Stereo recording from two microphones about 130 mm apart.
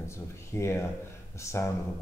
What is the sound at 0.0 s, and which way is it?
A man's voice, 20° left (ahead or behind).